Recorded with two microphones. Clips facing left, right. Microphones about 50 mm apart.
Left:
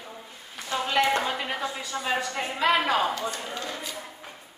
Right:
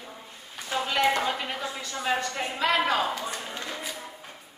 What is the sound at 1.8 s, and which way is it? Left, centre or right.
A woman's voice, centre.